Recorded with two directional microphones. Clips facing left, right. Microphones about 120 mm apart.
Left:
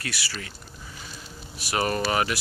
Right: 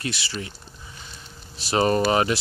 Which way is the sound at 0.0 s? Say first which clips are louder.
Right 4 dB; 20° right (ahead or behind).